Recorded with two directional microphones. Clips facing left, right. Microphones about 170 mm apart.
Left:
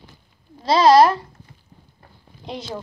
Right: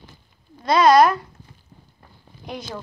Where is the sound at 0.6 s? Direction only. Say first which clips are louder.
Left 1 dB; 30° left (ahead or behind).